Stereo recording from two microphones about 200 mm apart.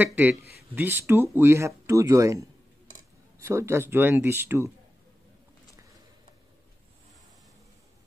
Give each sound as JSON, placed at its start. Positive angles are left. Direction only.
{"t": 0.0, "sound": "speech", "side_deg": -10}
{"t": 3.4, "sound": "speech", "side_deg": -15}